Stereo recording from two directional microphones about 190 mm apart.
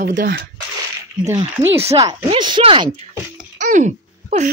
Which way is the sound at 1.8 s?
30° right (ahead or behind).